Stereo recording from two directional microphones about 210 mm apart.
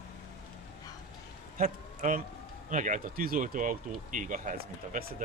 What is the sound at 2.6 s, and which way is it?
Speech, 35° right (ahead or behind).